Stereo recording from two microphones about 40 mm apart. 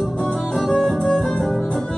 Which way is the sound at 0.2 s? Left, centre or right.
Centre.